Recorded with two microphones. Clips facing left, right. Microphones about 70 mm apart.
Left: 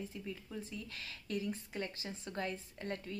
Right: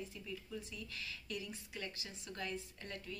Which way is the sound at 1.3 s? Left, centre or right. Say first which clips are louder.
Left 10 dB; left.